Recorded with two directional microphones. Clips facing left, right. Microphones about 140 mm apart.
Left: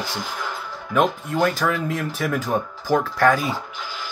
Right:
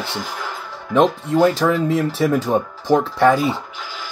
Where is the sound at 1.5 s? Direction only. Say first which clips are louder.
Right 6 dB; 25° right (ahead or behind).